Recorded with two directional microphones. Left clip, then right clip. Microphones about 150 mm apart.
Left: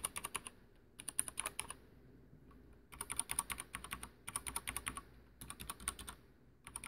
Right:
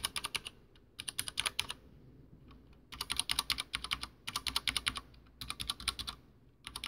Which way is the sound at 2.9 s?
5° left (ahead or behind).